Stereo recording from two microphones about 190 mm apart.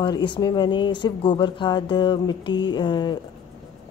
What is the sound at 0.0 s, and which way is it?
Speech, 25° left (ahead or behind).